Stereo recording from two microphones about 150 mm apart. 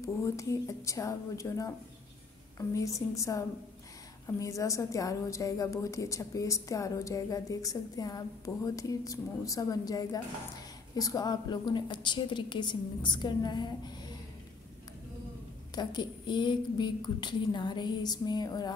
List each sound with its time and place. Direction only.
0.0 s a woman's voice: 20° left (ahead or behind)
2.7 s a woman's voice: 20° left (ahead or behind)
15.7 s a woman's voice: 30° left (ahead or behind)